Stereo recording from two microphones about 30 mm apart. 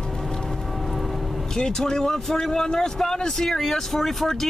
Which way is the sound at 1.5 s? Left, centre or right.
Centre.